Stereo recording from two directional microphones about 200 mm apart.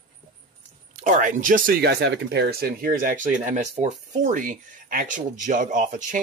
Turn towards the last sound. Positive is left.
turn(degrees=-40)  # may be behind; listen again after turning